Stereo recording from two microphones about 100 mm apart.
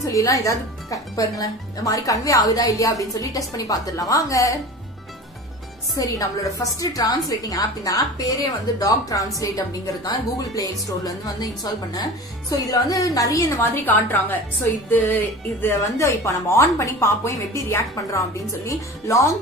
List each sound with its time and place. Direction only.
0.0 s speech: 35° left (ahead or behind)
5.9 s speech: 35° left (ahead or behind)
13.8 s speech: 20° left (ahead or behind)
15.7 s speech: 30° left (ahead or behind)